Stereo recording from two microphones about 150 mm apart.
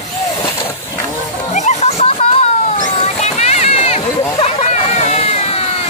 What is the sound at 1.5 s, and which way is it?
Music, 50° left (ahead or behind).